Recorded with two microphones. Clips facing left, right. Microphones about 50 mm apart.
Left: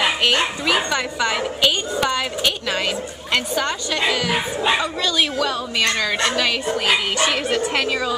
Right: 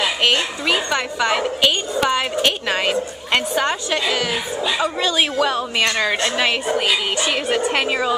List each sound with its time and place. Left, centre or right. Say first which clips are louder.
0.8 s a woman's voice: right 2 dB; centre